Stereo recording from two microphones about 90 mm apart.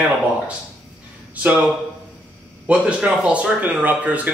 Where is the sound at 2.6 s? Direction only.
15° right (ahead or behind).